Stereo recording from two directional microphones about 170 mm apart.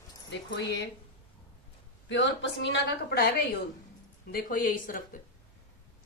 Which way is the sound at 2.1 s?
90° left.